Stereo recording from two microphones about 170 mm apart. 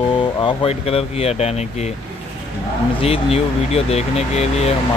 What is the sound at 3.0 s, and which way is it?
Speech, 35° left (ahead or behind).